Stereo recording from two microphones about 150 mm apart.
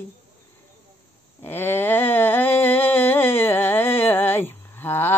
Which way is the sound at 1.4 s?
15° left (ahead or behind).